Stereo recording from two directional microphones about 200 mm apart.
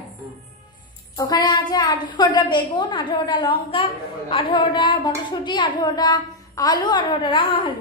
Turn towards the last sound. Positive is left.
turn(degrees=25)  # may be behind; listen again after turning